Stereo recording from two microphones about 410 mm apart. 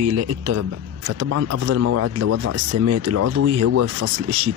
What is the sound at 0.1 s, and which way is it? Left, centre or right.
A man's voice, right.